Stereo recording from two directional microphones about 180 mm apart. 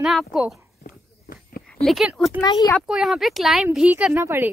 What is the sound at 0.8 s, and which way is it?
Walk, 55° left (ahead or behind).